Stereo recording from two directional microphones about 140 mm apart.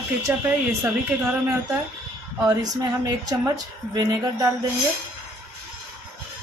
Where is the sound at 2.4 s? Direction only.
25° right (ahead or behind).